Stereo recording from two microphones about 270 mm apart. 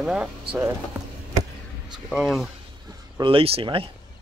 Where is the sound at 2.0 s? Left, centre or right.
Centre.